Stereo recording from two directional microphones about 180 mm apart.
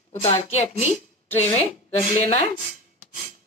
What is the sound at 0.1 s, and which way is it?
Speech, 35° left (ahead or behind).